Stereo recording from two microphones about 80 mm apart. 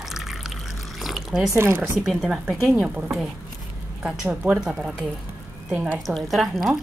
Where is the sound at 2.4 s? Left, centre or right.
Centre.